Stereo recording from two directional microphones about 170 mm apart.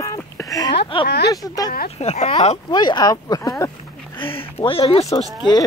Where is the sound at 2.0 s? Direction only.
40° left (ahead or behind).